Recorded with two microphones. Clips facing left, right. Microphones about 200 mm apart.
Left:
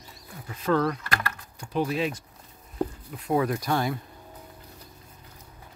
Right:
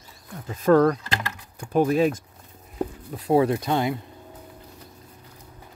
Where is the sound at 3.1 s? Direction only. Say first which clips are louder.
Right 7 dB; 30° right (ahead or behind).